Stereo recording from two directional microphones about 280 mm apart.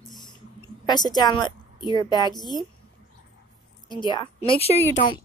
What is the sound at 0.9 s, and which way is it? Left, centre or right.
A woman's voice, centre.